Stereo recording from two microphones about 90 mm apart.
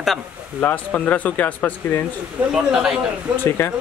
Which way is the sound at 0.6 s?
20° left (ahead or behind).